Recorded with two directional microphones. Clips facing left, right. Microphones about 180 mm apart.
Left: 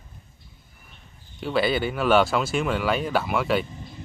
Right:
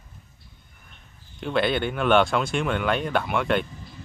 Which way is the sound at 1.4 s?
5° left (ahead or behind).